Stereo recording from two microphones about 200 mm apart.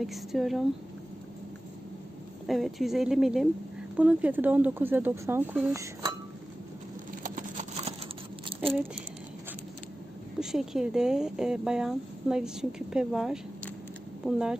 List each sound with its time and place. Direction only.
0.0 s speech: centre (ahead or behind)
2.4 s speech: centre (ahead or behind)
7.3 s a sound: 35° right (ahead or behind)
10.4 s speech: centre (ahead or behind)